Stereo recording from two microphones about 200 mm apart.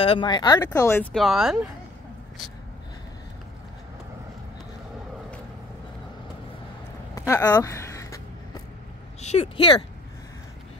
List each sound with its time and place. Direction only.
0.0 s speech: 25° left (ahead or behind)
1.1 s speech: centre (ahead or behind)
7.2 s a sound: 15° left (ahead or behind)
9.2 s speech: 30° left (ahead or behind)